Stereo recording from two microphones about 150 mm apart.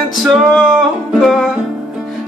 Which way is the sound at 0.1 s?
Centre (ahead or behind).